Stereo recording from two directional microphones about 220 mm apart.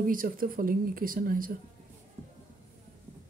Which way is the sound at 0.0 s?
40° right (ahead or behind).